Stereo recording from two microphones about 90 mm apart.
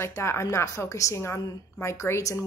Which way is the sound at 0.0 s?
30° left (ahead or behind).